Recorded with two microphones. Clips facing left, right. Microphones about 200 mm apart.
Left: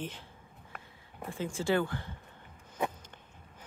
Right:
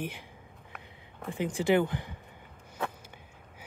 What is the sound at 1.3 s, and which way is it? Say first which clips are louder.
Speech: right 4 dB; 15° right (ahead or behind).